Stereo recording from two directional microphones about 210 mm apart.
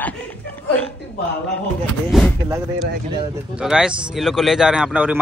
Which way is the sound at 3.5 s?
5° right (ahead or behind).